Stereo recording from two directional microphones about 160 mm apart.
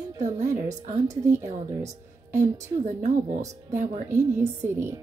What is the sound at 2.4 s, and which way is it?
A woman's voice, 50° right (ahead or behind).